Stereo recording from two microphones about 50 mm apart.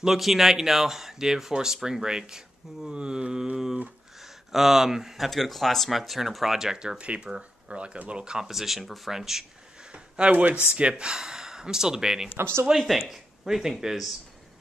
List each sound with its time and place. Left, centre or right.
0.0 s speech: centre
3.5 s speech: centre
7.0 s speech: right
9.9 s a sound: right
10.5 s speech: right
12.4 s speech: right
12.7 s speech: centre